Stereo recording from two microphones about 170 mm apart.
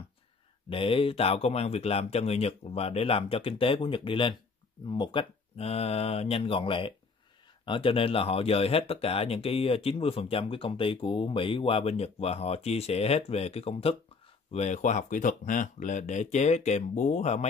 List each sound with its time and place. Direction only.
0.7 s speech: 30° left (ahead or behind)